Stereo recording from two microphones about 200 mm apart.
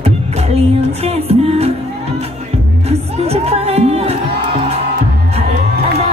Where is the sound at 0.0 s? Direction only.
30° right (ahead or behind).